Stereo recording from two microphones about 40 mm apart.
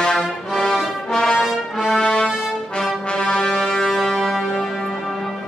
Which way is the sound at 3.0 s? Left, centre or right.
Left.